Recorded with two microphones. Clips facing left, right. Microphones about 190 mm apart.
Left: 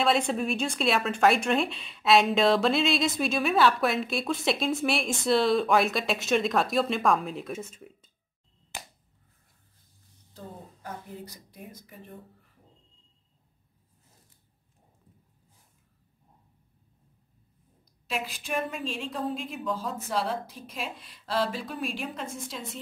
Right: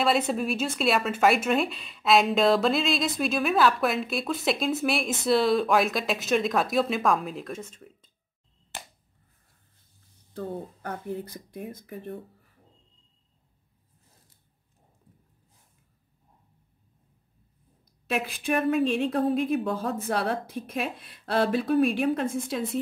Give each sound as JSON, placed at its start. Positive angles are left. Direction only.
{"t": 0.3, "sound": "speech", "side_deg": 0}
{"t": 10.3, "sound": "a woman's voice", "side_deg": -60}
{"t": 18.0, "sound": "a woman's voice", "side_deg": -55}